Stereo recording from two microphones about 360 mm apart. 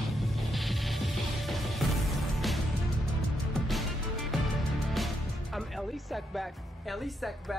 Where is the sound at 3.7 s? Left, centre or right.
Centre.